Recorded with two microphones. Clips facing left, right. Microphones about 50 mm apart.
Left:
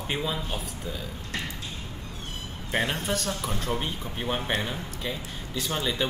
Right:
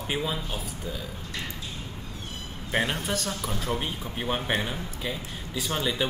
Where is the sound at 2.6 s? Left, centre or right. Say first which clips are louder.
Even; centre.